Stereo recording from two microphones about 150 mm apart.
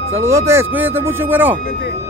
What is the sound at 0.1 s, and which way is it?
Speech, 20° right (ahead or behind).